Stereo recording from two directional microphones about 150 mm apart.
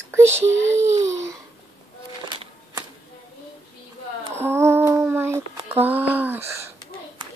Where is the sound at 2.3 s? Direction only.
30° right (ahead or behind).